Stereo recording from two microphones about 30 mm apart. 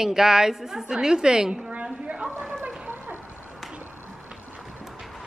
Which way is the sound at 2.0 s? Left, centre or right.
Right.